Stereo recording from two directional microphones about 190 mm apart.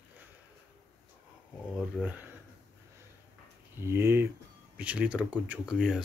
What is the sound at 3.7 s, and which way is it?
Speech, 15° right (ahead or behind).